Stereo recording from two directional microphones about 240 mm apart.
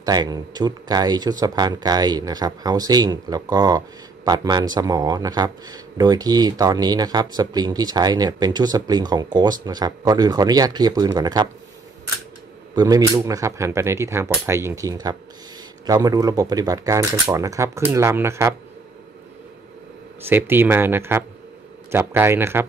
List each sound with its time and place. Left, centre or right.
0.0 s speech: centre
12.7 s speech: centre
20.2 s speech: centre